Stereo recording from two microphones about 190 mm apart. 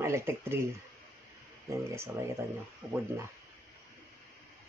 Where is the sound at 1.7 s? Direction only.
15° right (ahead or behind).